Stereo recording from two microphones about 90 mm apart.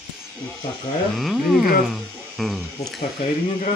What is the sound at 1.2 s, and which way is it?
A man's voice, centre (ahead or behind).